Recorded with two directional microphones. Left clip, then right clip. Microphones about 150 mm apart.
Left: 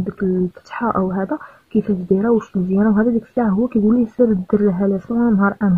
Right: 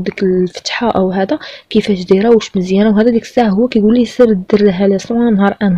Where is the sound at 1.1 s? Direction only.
35° right (ahead or behind).